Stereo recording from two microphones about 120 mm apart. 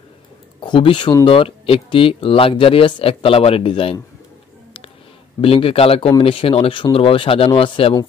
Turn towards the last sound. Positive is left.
turn(degrees=45)  # may be behind; listen again after turning